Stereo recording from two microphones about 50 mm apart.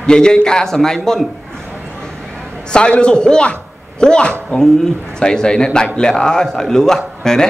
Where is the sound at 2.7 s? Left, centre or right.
Centre.